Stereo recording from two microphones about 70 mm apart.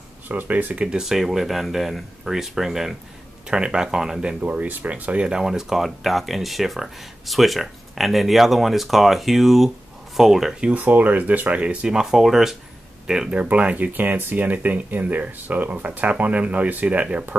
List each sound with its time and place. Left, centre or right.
0.3 s speech: right
0.8 s speech: centre
4.4 s speech: right; by 10.7 s centre
10.7 s speech: right; by 13.4 s centre
13.4 s speech: right